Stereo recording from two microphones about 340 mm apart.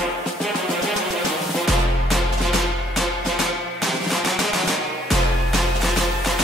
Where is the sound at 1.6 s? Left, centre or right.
Centre.